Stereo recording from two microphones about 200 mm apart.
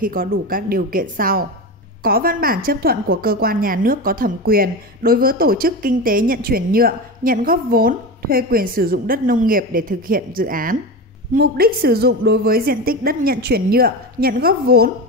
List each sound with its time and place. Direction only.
0.0 s a woman's voice: 45° right (ahead or behind)